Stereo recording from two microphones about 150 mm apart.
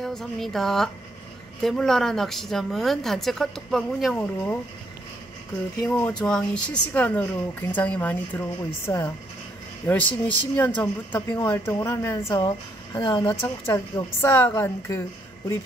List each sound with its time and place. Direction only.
0.0 s speech: centre (ahead or behind)
5.8 s speech: 5° left (ahead or behind)
12.4 s a woman's voice: 30° left (ahead or behind)